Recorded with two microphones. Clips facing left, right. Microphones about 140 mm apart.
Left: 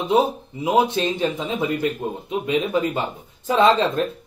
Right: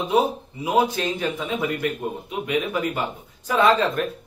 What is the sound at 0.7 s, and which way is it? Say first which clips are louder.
A man's voice: left 2 dB; 20° left (ahead or behind).